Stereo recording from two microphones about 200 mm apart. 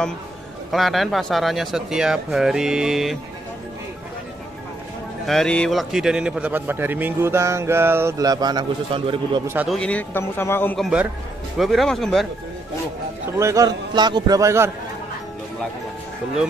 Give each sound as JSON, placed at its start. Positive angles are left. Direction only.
{"t": 0.7, "sound": "speech", "side_deg": 0}
{"t": 5.2, "sound": "a man's voice", "side_deg": 0}
{"t": 9.5, "sound": "a man's voice", "side_deg": -10}
{"t": 9.8, "sound": "a man's voice", "side_deg": 5}
{"t": 13.4, "sound": "a man's voice", "side_deg": -15}